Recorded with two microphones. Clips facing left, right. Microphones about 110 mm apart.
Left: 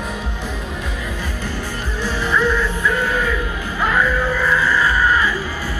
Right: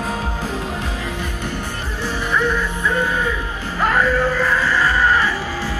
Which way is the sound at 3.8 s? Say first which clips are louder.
Right 2 dB; 45° right (ahead or behind).